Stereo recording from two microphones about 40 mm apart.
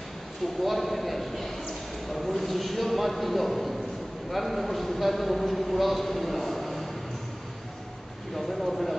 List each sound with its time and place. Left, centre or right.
0.7 s a sound: centre
4.3 s a man's voice: centre
8.4 s a man's voice: centre